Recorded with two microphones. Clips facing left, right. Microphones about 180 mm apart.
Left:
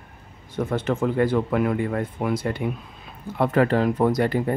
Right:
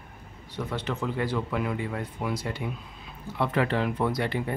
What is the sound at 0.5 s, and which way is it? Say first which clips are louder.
Speech: left 8 dB; 50° left (ahead or behind).